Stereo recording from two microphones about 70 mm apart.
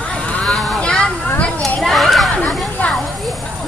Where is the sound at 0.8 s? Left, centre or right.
Centre.